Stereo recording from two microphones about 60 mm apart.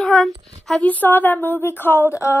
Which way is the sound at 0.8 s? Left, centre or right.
Left.